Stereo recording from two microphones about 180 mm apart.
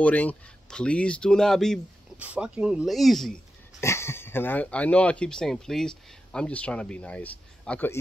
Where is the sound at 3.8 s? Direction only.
15° left (ahead or behind).